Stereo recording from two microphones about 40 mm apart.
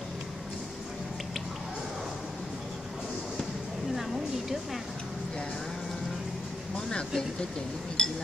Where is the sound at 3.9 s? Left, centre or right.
Centre.